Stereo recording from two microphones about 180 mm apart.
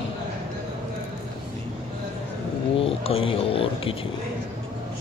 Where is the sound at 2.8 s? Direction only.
30° left (ahead or behind).